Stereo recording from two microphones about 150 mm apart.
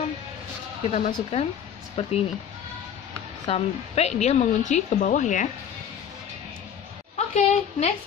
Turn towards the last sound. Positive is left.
turn(degrees=45)  # may be behind; listen again after turning